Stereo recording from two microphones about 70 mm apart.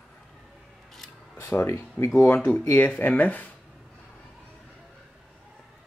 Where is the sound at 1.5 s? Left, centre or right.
Centre.